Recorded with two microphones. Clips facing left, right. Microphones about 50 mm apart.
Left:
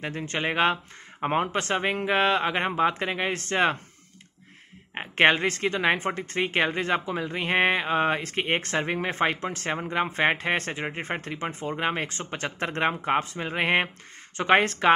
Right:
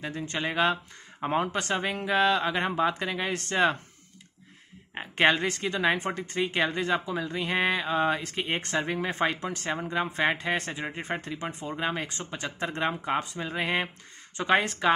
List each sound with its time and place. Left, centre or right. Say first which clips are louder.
0.0 s speech: left 2 dB; left
4.9 s speech: left 3 dB; left